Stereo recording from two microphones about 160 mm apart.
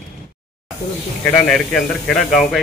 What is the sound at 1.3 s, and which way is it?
Speech, 10° left (ahead or behind).